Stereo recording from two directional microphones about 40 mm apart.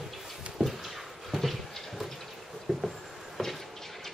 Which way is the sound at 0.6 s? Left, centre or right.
Centre.